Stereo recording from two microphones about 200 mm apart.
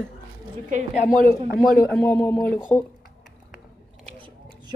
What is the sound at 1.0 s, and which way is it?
Speech, 45° left (ahead or behind).